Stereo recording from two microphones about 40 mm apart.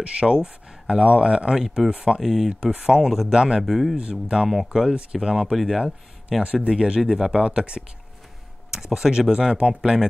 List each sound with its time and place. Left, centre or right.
0.0 s speech: right; by 2.5 s centre
2.6 s speech: centre
3.1 s speech: centre
3.3 s speech: right
3.6 s speech: centre
4.0 s speech: centre
5.5 s speech: centre
6.4 s speech: right
8.7 s speech: centre